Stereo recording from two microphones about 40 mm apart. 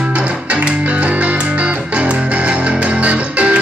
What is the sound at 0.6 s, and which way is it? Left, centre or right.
Music, right.